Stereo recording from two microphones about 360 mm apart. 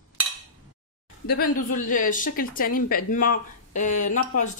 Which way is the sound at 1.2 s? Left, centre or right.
Left.